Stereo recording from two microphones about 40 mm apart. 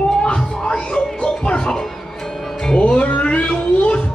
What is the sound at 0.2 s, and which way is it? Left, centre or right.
Music, left.